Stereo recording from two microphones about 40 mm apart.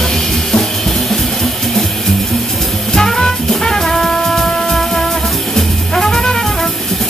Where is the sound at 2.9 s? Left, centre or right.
Centre.